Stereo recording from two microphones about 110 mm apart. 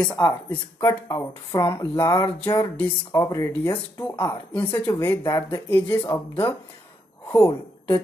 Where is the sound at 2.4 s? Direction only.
40° left (ahead or behind).